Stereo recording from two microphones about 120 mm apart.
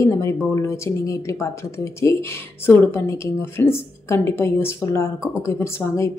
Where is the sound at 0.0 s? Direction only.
20° left (ahead or behind).